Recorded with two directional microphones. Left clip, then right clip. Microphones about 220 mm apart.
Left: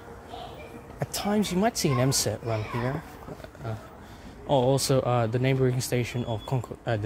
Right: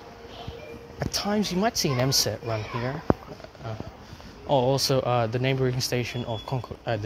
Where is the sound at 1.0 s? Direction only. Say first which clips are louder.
Right 1 dB; 15° left (ahead or behind).